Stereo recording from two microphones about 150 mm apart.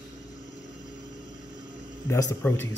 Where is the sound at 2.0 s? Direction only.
15° left (ahead or behind).